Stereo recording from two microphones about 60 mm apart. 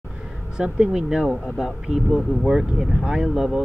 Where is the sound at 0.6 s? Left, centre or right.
Centre.